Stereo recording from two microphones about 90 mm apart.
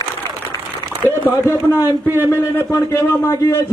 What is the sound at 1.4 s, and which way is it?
Speech, 25° right (ahead or behind).